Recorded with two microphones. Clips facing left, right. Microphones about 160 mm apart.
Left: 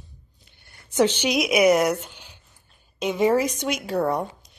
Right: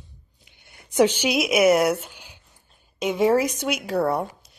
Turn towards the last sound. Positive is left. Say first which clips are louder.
# right 1 dB
turn(degrees=-5)  # may be behind; listen again after turning